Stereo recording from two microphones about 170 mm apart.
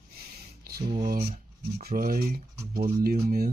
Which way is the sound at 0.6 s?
65° right (ahead or behind).